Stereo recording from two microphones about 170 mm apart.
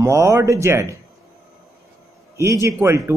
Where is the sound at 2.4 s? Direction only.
15° right (ahead or behind).